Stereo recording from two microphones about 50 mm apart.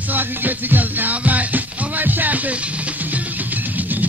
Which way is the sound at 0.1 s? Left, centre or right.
Right.